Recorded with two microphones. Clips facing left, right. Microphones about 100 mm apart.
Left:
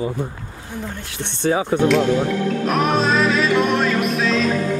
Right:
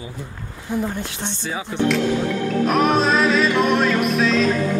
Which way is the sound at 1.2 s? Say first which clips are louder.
Left 8 dB; 60° left (ahead or behind).